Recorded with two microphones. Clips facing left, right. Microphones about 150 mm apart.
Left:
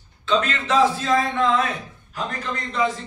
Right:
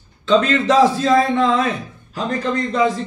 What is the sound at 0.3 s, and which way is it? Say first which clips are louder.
Speech: right 6 dB; 35° right (ahead or behind).